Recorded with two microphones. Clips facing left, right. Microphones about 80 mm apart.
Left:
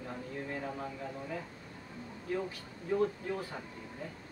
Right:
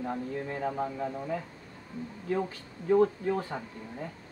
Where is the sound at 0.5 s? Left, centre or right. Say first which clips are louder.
Right 7 dB; right.